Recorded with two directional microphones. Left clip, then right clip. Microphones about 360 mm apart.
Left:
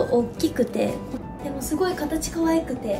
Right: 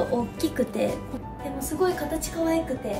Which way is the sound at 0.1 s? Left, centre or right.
Centre.